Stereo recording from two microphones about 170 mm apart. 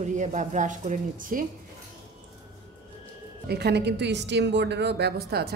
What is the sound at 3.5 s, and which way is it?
A woman's voice, 75° right (ahead or behind).